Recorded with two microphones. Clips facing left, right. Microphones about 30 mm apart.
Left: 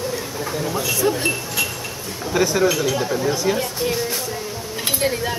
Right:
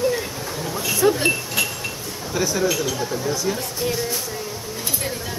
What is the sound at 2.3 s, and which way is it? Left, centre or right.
Speech, left.